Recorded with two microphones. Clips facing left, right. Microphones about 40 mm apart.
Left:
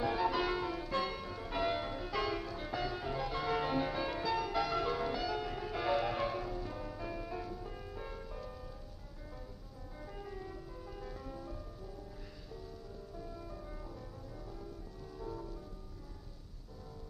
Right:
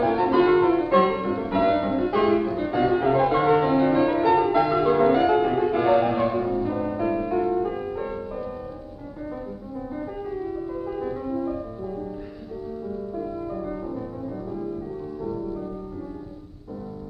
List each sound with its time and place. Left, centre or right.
0.0 s music: right
3.5 s music: right
5.0 s music: right
10.3 s music: right
10.7 s music: right
13.1 s music: right